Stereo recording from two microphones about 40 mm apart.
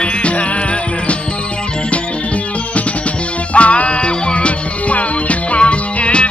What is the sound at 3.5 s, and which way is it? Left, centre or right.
Music, left.